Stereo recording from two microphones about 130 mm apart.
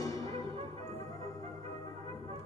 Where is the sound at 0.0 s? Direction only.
25° left (ahead or behind).